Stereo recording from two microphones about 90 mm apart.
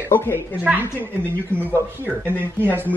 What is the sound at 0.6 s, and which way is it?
Speech, 20° right (ahead or behind).